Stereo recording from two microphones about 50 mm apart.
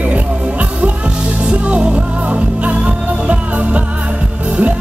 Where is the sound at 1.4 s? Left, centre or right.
Right.